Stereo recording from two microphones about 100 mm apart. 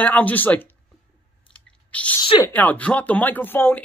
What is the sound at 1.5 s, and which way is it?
Chewing, 15° left (ahead or behind).